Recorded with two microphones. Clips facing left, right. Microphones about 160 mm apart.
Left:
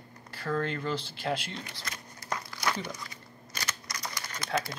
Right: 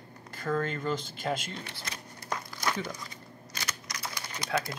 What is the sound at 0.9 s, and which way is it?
Speech, 45° right (ahead or behind).